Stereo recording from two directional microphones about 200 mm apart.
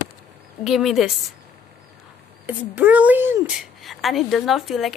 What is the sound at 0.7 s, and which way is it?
Speech, centre (ahead or behind).